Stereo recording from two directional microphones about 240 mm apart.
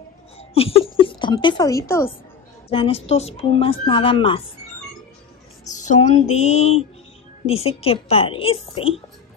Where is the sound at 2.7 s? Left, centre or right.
Left.